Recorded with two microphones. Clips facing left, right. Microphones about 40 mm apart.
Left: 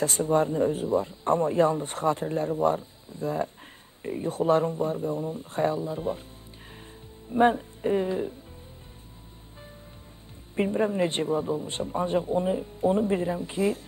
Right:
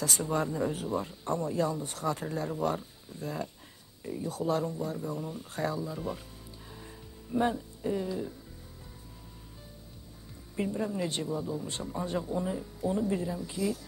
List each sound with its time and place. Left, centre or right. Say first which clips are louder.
0.0 s speech: left 7 dB; left
1.2 s speech: left 8 dB; left
7.3 s speech: left 8 dB; left
10.5 s speech: left 7 dB; left